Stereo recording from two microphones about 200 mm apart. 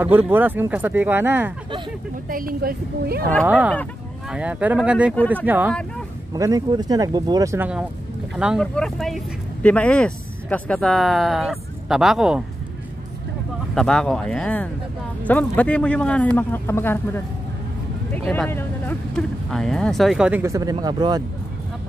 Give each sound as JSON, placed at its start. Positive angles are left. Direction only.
{"t": 0.0, "sound": "speech", "side_deg": -10}
{"t": 2.2, "sound": "a woman's voice", "side_deg": -45}
{"t": 3.4, "sound": "speech", "side_deg": -5}
{"t": 13.7, "sound": "a man's voice", "side_deg": 5}